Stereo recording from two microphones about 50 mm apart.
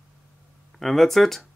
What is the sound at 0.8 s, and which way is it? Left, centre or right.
Speech, centre.